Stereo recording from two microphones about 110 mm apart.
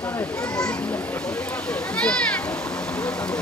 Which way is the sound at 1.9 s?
10° left (ahead or behind).